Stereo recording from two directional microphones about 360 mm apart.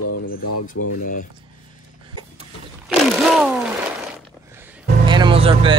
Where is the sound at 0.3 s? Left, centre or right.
Left.